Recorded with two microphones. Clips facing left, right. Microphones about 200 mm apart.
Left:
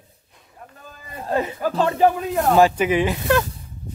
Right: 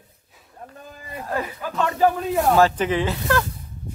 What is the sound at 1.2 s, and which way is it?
Speech, 25° left (ahead or behind).